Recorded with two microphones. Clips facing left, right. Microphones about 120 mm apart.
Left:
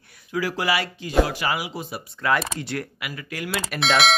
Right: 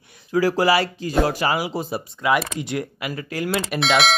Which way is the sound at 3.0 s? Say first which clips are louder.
Right 6 dB; 35° right (ahead or behind).